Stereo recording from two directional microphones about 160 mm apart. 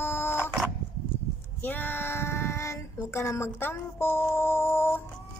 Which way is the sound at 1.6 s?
10° left (ahead or behind).